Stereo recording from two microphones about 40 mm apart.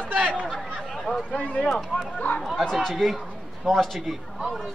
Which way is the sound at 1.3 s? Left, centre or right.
Left.